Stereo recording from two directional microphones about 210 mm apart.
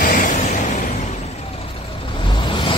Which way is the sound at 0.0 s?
40° left (ahead or behind).